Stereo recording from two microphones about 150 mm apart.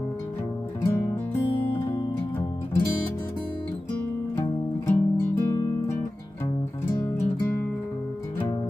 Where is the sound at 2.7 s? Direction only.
15° left (ahead or behind).